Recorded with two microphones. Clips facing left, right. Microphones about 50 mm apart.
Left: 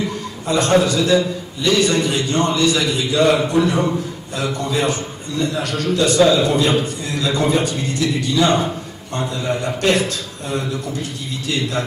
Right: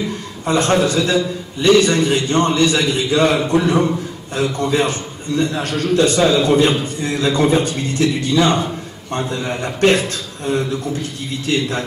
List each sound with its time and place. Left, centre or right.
0.5 s a man's voice: right